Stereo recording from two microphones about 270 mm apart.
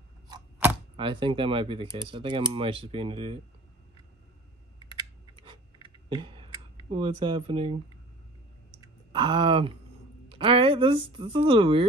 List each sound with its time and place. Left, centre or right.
0.3 s a sound: centre
0.9 s speech: centre
4.9 s typing: centre
9.1 s speech: centre